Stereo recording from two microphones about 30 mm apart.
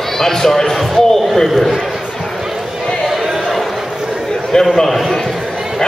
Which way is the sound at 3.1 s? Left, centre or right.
Centre.